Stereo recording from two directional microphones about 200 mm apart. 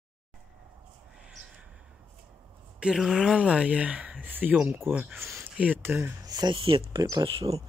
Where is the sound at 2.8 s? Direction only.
Centre (ahead or behind).